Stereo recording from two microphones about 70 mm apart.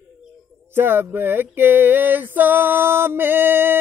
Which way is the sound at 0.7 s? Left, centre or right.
Right.